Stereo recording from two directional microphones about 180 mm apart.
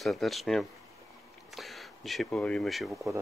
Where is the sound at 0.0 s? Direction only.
Centre (ahead or behind).